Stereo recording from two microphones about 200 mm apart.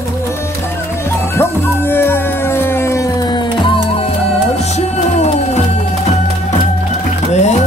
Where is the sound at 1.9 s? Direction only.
10° left (ahead or behind).